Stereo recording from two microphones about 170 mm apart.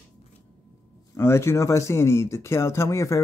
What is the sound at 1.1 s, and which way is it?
Speech, 15° left (ahead or behind).